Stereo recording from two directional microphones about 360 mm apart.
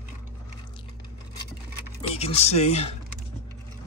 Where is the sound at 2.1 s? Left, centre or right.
Centre.